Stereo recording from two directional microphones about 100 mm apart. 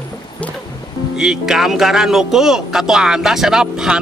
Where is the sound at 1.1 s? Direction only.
5° right (ahead or behind).